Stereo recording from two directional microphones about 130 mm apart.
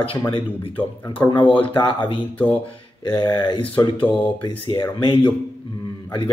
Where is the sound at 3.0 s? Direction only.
35° left (ahead or behind).